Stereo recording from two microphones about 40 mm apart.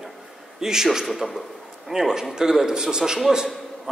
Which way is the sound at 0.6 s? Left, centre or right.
Centre.